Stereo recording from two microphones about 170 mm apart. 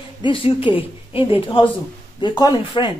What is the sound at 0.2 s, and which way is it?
A woman's voice, 30° left (ahead or behind).